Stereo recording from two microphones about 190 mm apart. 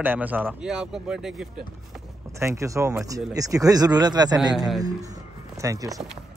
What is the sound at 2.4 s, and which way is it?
Speech, 15° right (ahead or behind).